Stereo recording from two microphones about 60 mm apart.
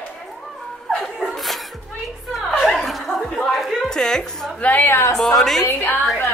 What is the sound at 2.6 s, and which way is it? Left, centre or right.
Chuckle, centre.